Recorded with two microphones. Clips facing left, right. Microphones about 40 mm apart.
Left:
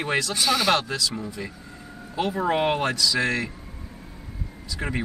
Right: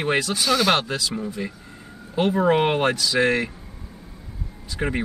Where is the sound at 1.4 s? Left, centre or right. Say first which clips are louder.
Right 4 dB; centre.